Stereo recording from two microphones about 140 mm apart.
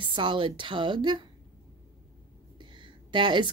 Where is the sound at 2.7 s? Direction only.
35° right (ahead or behind).